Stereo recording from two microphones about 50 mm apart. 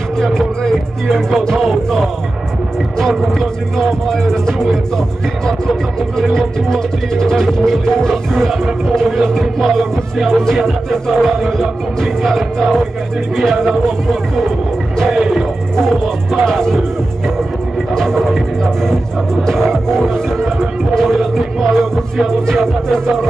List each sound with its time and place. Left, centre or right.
0.2 s speech: centre
3.0 s speech: centre
15.0 s music: centre
15.8 s speech: centre
17.9 s speech: centre